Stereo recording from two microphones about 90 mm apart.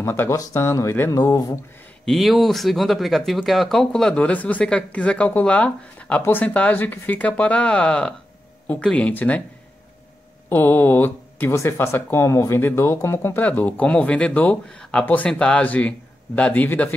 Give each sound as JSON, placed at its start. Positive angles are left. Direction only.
{"t": 0.0, "sound": "speech", "side_deg": 25}
{"t": 1.1, "sound": "speech", "side_deg": 45}
{"t": 2.0, "sound": "speech", "side_deg": 0}
{"t": 10.5, "sound": "speech", "side_deg": 25}